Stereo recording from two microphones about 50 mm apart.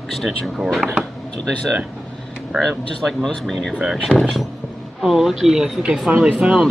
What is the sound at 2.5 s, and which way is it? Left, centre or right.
Speech, centre.